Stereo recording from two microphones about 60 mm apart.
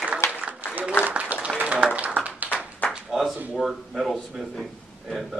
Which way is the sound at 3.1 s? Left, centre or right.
Centre.